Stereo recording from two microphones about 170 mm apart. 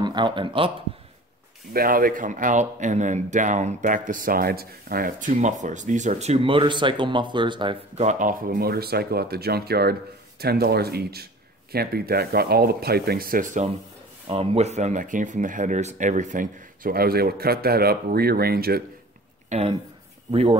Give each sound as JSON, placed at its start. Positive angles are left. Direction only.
{"t": 0.0, "sound": "speech", "side_deg": -25}
{"t": 1.7, "sound": "speech", "side_deg": -60}
{"t": 5.3, "sound": "speech", "side_deg": -45}
{"t": 8.0, "sound": "a man's voice", "side_deg": -45}
{"t": 14.3, "sound": "a man's voice", "side_deg": -35}
{"t": 19.5, "sound": "speech", "side_deg": -40}